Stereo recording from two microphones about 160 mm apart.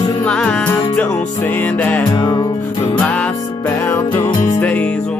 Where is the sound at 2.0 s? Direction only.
25° left (ahead or behind).